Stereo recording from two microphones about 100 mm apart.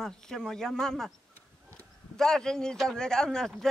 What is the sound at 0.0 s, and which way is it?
Speech, 5° left (ahead or behind).